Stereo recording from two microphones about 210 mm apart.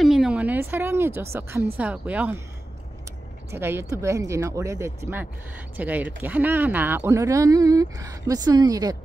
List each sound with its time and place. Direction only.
0.0 s a sound: centre (ahead or behind)
1.8 s speech: 5° right (ahead or behind)
3.5 s speech: 10° right (ahead or behind)